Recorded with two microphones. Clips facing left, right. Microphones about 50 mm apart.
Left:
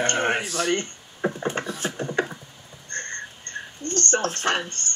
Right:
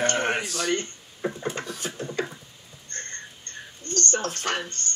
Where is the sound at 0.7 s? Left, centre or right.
Left.